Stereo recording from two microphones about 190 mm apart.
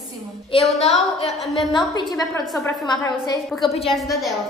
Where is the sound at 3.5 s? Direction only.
Centre (ahead or behind).